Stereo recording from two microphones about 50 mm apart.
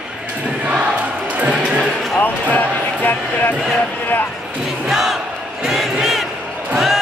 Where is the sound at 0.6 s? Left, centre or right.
Right.